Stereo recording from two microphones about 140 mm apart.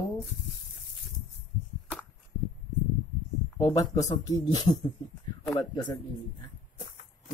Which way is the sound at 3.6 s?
25° left (ahead or behind).